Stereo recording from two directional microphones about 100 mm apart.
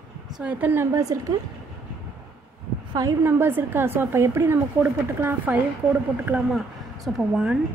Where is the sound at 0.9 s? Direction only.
35° right (ahead or behind).